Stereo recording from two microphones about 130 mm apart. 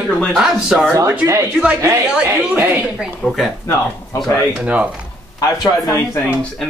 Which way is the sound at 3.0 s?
Centre (ahead or behind).